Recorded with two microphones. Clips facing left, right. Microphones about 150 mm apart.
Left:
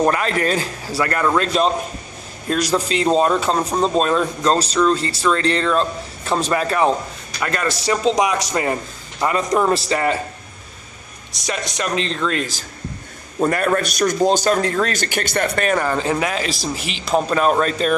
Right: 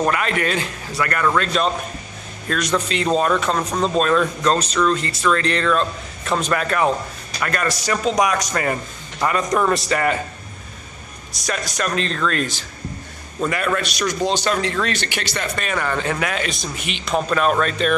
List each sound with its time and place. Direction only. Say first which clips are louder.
0.1 s a man's voice: left 2 dB; 35° left (ahead or behind)
2.5 s a man's voice: left 2 dB; 35° left (ahead or behind)
11.4 s speech: even; 20° left (ahead or behind)
13.4 s speech: left 4 dB; 40° left (ahead or behind)
16.0 s a man's voice: left 2 dB; 30° left (ahead or behind)